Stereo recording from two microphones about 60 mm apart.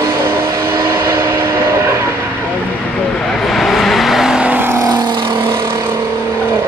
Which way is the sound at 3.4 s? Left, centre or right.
Centre.